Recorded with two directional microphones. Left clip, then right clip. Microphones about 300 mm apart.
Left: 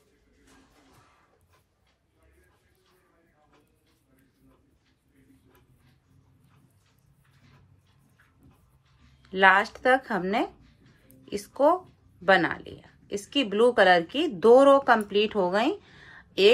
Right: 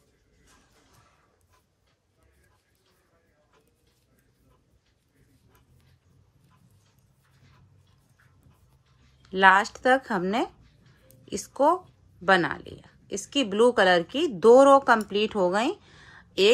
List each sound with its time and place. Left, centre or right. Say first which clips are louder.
9.2 s a woman's voice: right 1 dB; centre